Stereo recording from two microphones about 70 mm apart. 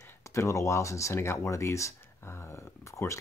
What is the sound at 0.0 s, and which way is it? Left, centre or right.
Speech, left.